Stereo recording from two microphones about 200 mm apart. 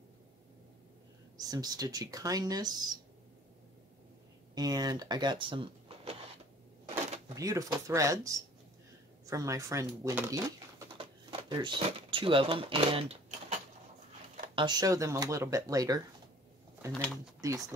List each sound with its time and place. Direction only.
1.4 s speech: 20° right (ahead or behind)
4.6 s speech: 20° right (ahead or behind)
7.3 s speech: 15° right (ahead or behind)
14.5 s speech: 20° right (ahead or behind)
16.9 s speech: centre (ahead or behind)
17.4 s speech: 15° right (ahead or behind)